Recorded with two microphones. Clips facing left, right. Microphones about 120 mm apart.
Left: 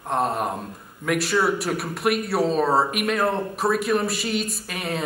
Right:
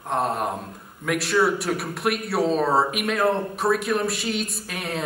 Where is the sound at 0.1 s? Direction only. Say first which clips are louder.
Left 1 dB; centre (ahead or behind).